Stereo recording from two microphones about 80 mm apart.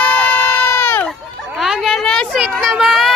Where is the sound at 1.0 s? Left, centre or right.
Centre.